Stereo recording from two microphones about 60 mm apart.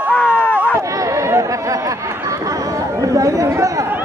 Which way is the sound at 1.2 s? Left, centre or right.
Right.